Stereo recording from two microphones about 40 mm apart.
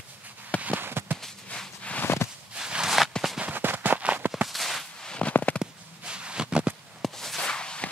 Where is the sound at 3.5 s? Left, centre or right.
Right.